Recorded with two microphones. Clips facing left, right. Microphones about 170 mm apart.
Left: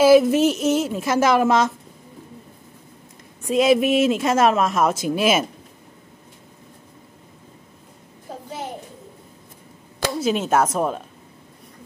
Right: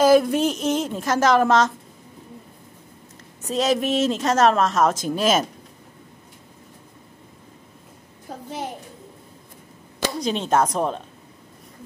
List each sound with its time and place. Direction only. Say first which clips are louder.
0.0 s a woman's voice: left 3 dB; 5° left (ahead or behind)
3.4 s a woman's voice: left 5 dB; 10° left (ahead or behind)
10.1 s a woman's voice: left 2 dB; 5° left (ahead or behind)